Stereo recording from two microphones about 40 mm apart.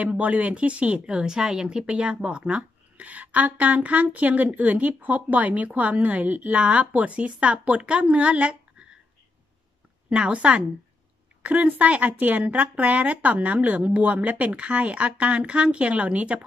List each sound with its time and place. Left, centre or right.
0.0 s speech: right
1.0 s speech: centre
10.0 s a woman's voice: right
11.4 s speech: right